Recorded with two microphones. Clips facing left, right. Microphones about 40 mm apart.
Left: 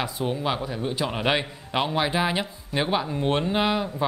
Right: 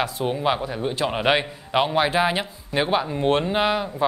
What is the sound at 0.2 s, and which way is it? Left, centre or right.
A man's voice, centre.